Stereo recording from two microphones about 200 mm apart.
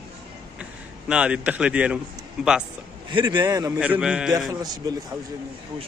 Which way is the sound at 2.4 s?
5° right (ahead or behind).